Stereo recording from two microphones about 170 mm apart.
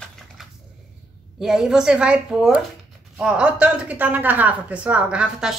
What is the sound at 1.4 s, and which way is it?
A woman's voice, 5° right (ahead or behind).